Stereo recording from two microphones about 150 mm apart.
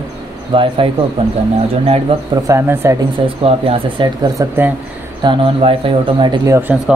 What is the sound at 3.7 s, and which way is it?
Speech, 30° right (ahead or behind).